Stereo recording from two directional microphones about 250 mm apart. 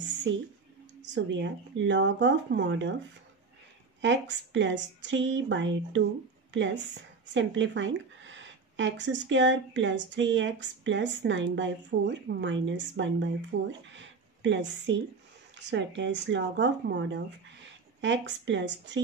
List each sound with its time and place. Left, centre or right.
0.3 s speech: right
4.0 s speech: right